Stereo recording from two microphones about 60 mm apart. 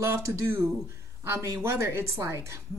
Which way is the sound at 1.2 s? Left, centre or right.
Right.